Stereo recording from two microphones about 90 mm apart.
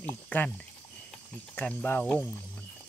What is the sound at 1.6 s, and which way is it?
Speech, 20° left (ahead or behind).